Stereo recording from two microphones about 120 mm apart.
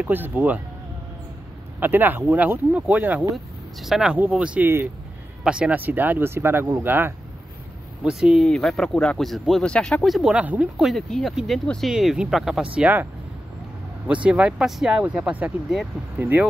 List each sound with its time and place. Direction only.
0.0 s speech: 15° right (ahead or behind)
1.8 s speech: 15° right (ahead or behind)
8.0 s speech: 5° right (ahead or behind)
12.7 s speech: 15° right (ahead or behind)